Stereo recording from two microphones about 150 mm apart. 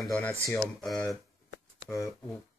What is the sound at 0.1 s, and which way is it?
Speech, 15° left (ahead or behind).